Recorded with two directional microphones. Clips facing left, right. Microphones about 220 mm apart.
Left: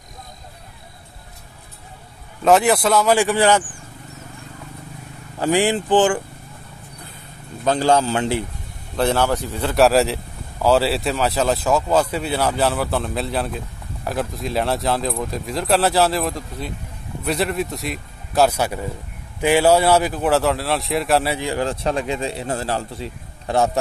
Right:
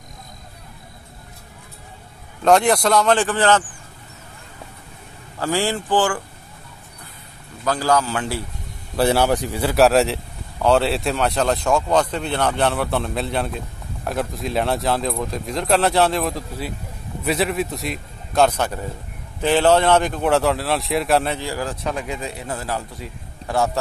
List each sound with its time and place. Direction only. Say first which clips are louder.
2.4 s speech: even; 5° left (ahead or behind)
5.4 s speech: left 4 dB; 15° left (ahead or behind)
7.6 s speech: left 3 dB; 25° left (ahead or behind)
8.9 s speech: right 1 dB; 10° right (ahead or behind)
21.4 s speech: left 4 dB; 20° left (ahead or behind)